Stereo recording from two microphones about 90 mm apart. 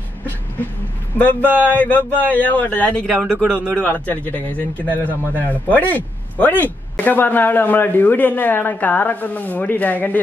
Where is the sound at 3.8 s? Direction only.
20° left (ahead or behind).